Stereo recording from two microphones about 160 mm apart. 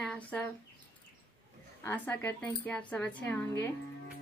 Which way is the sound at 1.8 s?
10° left (ahead or behind).